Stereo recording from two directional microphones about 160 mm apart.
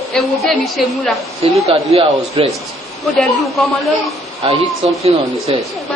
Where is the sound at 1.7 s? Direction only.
40° right (ahead or behind).